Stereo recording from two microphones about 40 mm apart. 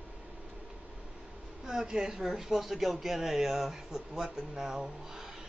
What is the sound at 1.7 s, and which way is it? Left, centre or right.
Speech, centre.